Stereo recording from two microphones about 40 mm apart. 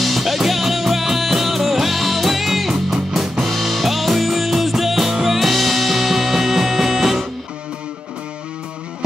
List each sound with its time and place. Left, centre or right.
0.0 s music: centre